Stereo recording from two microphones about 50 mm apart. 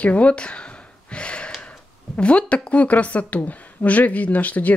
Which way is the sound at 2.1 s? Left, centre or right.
Left.